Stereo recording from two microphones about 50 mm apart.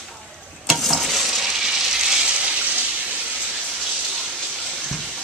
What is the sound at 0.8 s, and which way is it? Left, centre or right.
Stir, centre.